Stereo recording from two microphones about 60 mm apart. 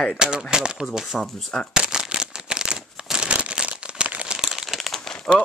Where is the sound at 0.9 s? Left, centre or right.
Centre.